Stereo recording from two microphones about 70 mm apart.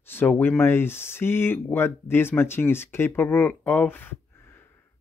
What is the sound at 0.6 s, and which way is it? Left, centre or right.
Speech, left.